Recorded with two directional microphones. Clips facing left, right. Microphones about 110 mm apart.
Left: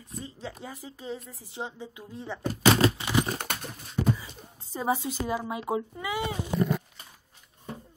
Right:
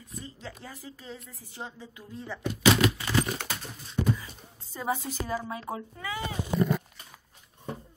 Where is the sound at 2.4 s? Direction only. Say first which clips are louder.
Left 1 dB; 35° left (ahead or behind).